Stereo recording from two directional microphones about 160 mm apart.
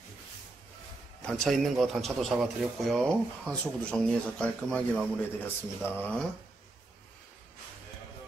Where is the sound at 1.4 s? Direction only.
Centre (ahead or behind).